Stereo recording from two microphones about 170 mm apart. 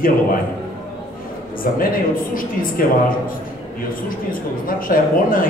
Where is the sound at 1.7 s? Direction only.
60° left (ahead or behind).